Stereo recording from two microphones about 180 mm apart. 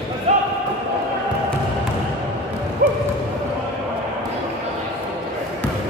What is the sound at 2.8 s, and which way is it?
Bow-wow, 55° right (ahead or behind).